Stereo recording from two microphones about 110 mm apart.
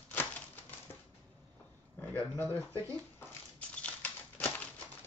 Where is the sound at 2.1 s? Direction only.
25° right (ahead or behind).